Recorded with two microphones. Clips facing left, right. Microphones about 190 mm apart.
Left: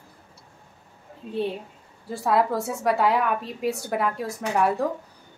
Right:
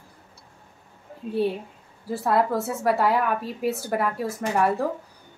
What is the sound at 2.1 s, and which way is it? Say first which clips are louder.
A woman's voice: even; centre (ahead or behind).